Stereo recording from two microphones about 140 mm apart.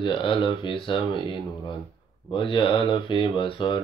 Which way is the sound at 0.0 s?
35° left (ahead or behind).